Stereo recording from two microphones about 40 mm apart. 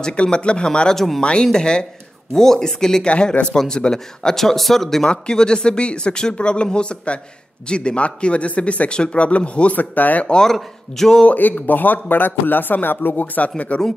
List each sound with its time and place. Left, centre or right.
0.0 s speech: left
0.9 s speech: centre
1.2 s speech: centre
3.1 s speech: left; by 5.0 s centre
5.0 s speech: left
9.8 s speech: left
10.4 s speech: centre
11.2 s speech: left